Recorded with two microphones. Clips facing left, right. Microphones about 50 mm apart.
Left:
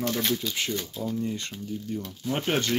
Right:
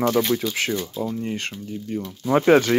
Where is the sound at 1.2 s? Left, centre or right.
Right.